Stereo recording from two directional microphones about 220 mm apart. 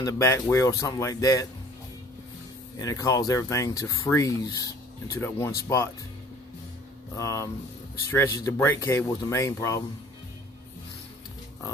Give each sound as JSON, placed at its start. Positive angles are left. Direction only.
{"t": 0.0, "sound": "speech", "side_deg": 10}
{"t": 2.8, "sound": "speech", "side_deg": 15}
{"t": 7.2, "sound": "speech", "side_deg": 15}
{"t": 8.5, "sound": "speech", "side_deg": 10}